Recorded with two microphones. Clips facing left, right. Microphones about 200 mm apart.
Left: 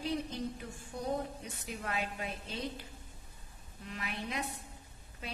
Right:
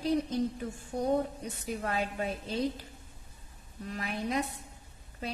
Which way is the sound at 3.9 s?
40° right (ahead or behind).